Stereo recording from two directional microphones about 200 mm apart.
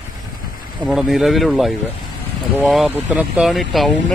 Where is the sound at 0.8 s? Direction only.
5° right (ahead or behind).